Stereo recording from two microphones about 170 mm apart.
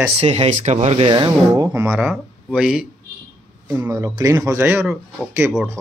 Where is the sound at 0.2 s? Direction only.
35° right (ahead or behind); by 2.0 s 15° right (ahead or behind).